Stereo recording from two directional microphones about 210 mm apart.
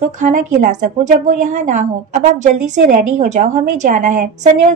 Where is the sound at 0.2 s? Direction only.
35° right (ahead or behind).